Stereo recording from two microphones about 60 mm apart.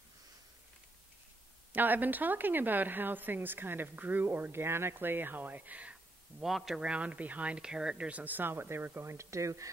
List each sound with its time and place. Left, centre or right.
1.7 s speech: right
6.4 s speech: centre
6.8 s speech: right
8.2 s speech: right